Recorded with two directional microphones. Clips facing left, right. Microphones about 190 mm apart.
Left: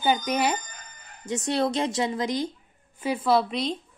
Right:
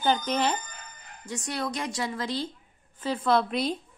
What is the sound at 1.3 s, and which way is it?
A woman's voice, 25° left (ahead or behind).